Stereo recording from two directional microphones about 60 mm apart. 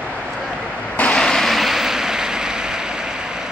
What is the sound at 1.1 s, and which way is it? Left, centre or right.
Vehicle, centre.